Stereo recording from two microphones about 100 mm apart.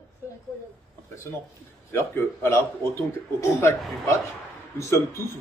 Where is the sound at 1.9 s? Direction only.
20° left (ahead or behind).